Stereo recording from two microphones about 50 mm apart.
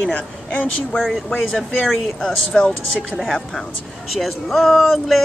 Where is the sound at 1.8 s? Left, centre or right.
Centre.